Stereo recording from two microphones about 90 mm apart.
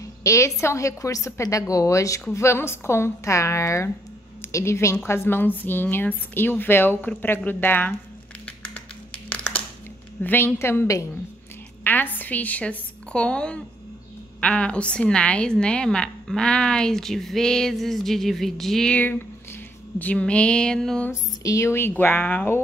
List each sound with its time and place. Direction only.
0.2 s a woman's voice: 35° left (ahead or behind)
9.3 s a sound: 15° left (ahead or behind)
10.2 s a woman's voice: 25° left (ahead or behind); by 18.9 s 5° left (ahead or behind)
18.9 s a woman's voice: 20° left (ahead or behind)
21.1 s a woman's voice: 35° left (ahead or behind); by 22.6 s 20° left (ahead or behind)